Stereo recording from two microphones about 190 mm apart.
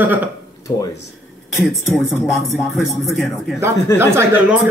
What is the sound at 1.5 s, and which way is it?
Music, centre (ahead or behind).